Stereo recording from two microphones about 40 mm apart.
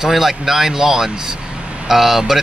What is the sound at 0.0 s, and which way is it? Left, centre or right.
Speech, centre.